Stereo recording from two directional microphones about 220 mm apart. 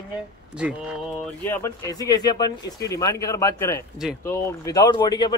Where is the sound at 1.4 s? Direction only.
10° left (ahead or behind).